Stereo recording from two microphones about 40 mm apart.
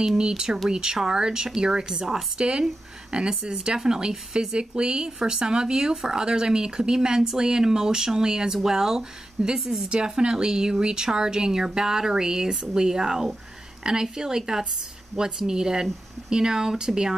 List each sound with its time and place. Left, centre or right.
0.2 s speech: centre